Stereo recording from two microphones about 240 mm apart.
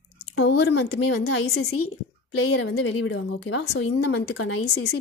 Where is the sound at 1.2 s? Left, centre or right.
Left.